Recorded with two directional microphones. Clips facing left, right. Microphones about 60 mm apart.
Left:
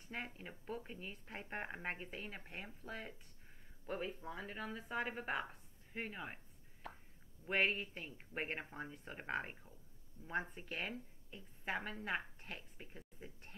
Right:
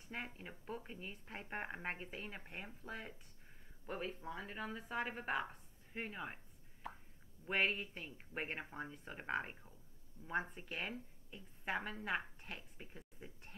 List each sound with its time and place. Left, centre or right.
0.0 s speech: centre
4.2 s a woman's voice: centre
10.2 s speech: right
10.5 s speech: centre